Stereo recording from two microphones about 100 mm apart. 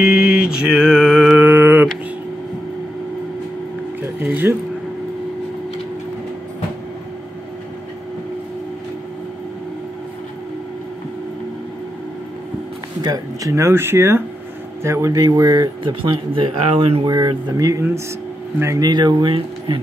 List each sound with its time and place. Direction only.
0.0 s mantra: 5° right (ahead or behind)
13.0 s speech: 40° right (ahead or behind)
15.8 s speech: 60° right (ahead or behind)
17.0 s speech: 45° right (ahead or behind)